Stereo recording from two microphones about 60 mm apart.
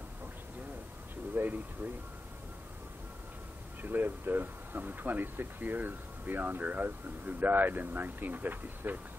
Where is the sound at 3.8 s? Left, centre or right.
Right.